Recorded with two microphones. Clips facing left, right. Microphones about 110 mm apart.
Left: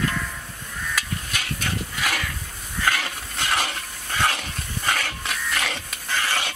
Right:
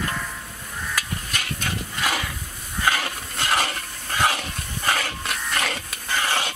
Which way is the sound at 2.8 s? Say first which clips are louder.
Right 1 dB; 10° right (ahead or behind).